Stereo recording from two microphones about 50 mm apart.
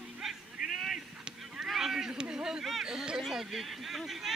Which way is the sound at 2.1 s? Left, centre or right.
Centre.